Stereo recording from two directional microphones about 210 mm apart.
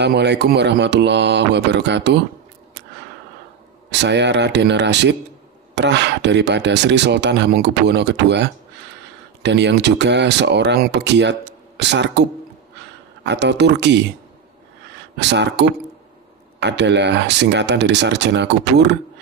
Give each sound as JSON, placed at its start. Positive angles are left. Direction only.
{"t": 0.0, "sound": "speech", "side_deg": -55}
{"t": 3.9, "sound": "speech", "side_deg": -55}
{"t": 15.1, "sound": "speech", "side_deg": -55}